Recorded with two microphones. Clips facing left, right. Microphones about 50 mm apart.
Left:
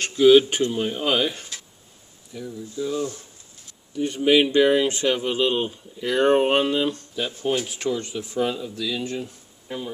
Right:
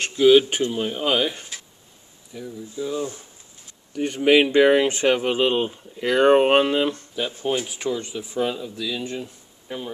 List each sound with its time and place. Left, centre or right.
0.0 s speech: centre
4.2 s speech: right
4.8 s speech: right
6.9 s speech: right
7.2 s speech: centre